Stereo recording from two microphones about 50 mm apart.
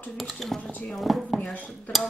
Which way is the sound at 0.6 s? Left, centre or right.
Left.